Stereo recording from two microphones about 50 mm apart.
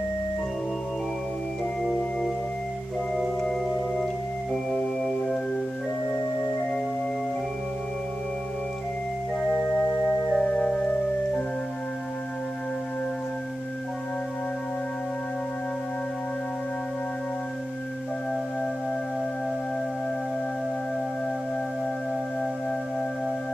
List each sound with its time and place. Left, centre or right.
4.5 s music: centre
10.3 s music: centre